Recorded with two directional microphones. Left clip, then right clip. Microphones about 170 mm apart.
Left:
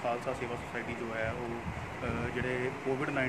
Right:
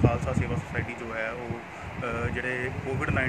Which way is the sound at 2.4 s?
Centre (ahead or behind).